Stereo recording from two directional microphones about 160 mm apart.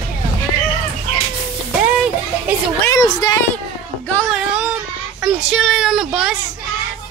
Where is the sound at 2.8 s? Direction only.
20° left (ahead or behind).